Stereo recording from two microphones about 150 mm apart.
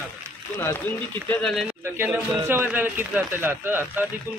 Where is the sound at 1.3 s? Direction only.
5° left (ahead or behind).